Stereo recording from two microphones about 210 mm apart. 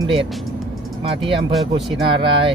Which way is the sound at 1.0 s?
25° right (ahead or behind).